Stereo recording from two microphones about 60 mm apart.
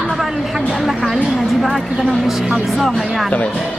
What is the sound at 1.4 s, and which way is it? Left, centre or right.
Speech, centre.